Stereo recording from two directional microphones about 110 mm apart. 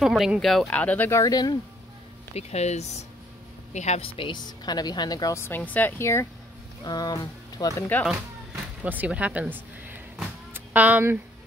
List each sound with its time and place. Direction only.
0.0 s speech: centre (ahead or behind)
0.7 s speech: 15° left (ahead or behind)
1.2 s speech: 35° left (ahead or behind)
2.3 s speech: 85° left
4.2 s speech: 45° left (ahead or behind)
5.4 s speech: 15° left (ahead or behind)
6.8 s speech: 35° left (ahead or behind)
8.8 s speech: 15° right (ahead or behind)